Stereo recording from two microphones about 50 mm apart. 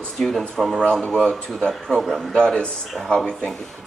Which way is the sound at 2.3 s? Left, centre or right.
Centre.